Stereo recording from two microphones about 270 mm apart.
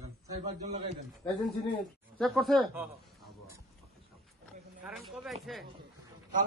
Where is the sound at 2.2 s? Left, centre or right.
Centre.